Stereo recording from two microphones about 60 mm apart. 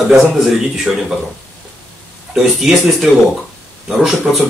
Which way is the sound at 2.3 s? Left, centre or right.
Centre.